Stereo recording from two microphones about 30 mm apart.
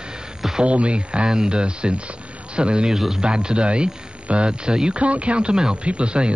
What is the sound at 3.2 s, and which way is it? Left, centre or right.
Speech, right.